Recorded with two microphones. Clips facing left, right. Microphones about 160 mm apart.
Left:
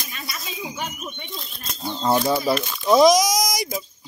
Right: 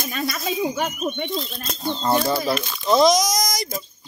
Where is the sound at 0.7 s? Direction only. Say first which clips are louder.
Right 7 dB; 80° right; by 1.6 s 60° right (ahead or behind).